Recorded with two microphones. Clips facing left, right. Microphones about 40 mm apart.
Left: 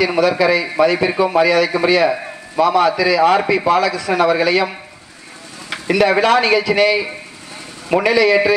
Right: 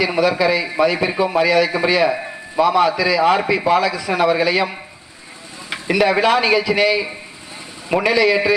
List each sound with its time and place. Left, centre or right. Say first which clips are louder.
0.0 s a man's voice: left 2 dB; centre
1.5 s a man's voice: left 2 dB; centre
5.7 s a sound: left 2 dB; centre
6.2 s a man's voice: left 2 dB; centre